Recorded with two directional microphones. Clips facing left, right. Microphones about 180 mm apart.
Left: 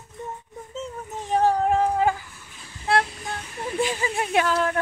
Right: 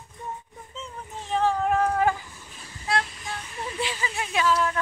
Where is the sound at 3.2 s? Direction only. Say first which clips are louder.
Left 2 dB; 50° left (ahead or behind).